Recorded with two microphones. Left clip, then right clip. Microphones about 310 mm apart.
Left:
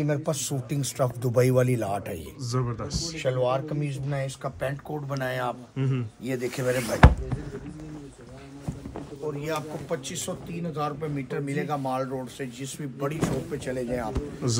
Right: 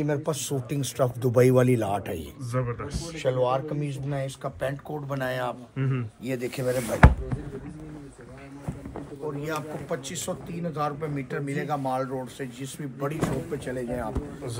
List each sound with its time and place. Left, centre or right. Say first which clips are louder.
0.0 s speech: even; centre
2.5 s speech: even; centre
8.6 s speech: even; centre